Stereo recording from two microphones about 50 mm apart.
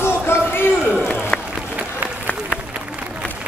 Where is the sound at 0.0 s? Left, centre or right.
Left.